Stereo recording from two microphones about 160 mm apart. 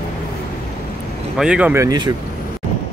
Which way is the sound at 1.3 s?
5° right (ahead or behind).